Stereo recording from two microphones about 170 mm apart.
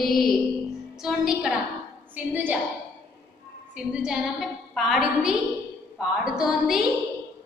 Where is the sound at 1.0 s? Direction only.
5° right (ahead or behind).